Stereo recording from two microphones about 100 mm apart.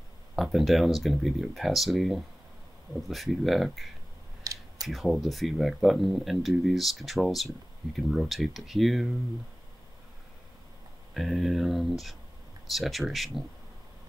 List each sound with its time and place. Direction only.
0.4 s speech: centre (ahead or behind)
4.4 s a sound: 35° right (ahead or behind)
4.8 s speech: centre (ahead or behind)
11.1 s speech: centre (ahead or behind)